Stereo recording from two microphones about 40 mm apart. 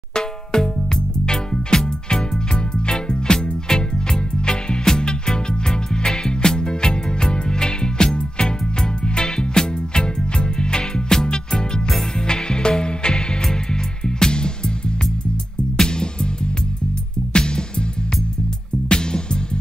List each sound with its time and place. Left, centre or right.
0.1 s music: centre
15.8 s music: left
17.3 s music: left
18.9 s music: left